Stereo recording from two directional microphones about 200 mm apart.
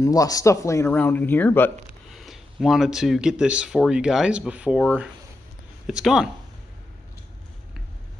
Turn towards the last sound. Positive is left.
turn(degrees=-5)  # may be behind; listen again after turning